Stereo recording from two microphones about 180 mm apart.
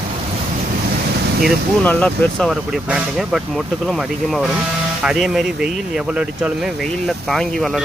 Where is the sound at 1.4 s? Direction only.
5° left (ahead or behind).